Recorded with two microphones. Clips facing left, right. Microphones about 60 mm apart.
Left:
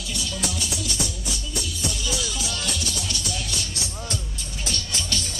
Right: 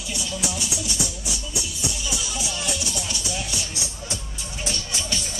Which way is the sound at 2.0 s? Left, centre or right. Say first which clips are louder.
Left 1 dB; centre.